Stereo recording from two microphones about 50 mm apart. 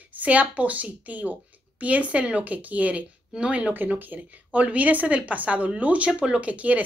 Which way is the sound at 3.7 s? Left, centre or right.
Right.